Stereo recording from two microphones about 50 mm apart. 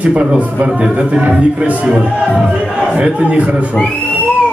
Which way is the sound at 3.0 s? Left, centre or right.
Right.